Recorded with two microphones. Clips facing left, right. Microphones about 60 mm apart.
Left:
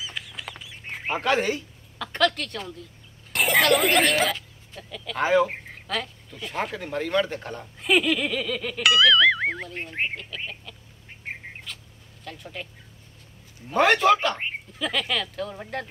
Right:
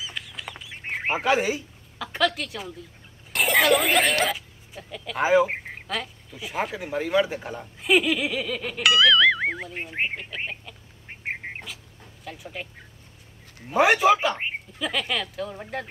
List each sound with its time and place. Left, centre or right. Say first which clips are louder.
0.0 s bird: even; centre
1.1 s a woman's voice: even; centre
11.4 s bird: right 5 dB; right
12.3 s speech: right 1 dB; centre
13.7 s speech: even; centre